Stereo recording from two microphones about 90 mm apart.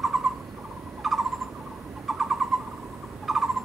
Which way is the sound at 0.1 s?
Centre (ahead or behind).